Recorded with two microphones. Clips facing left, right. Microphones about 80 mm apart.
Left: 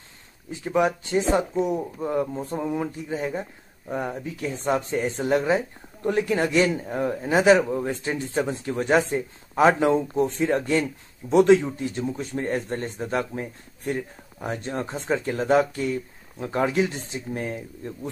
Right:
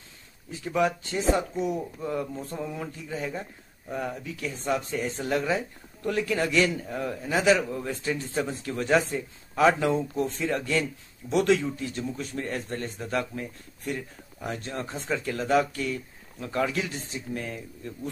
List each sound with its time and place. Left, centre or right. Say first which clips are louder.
0.5 s speech: left 3 dB; left